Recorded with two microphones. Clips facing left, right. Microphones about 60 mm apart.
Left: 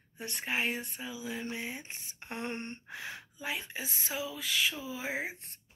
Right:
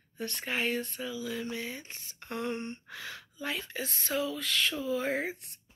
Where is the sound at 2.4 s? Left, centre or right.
Left.